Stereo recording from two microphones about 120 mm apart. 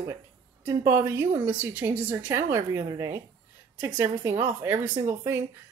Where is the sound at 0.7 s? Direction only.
20° right (ahead or behind).